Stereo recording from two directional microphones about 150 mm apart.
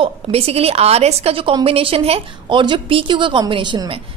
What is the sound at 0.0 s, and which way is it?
A woman's voice, 40° right (ahead or behind).